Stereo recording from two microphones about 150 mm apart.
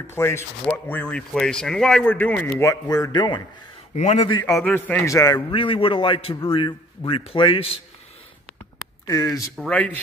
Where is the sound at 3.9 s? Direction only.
50° left (ahead or behind).